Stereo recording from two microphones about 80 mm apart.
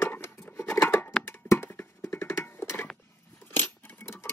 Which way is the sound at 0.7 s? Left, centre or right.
Left.